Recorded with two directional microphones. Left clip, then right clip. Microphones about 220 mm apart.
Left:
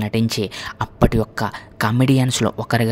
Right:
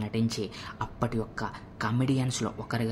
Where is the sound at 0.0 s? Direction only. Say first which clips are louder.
Left 10 dB; 40° left (ahead or behind).